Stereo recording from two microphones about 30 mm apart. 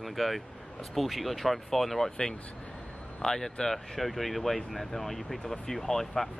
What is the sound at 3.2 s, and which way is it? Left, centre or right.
Speech, centre.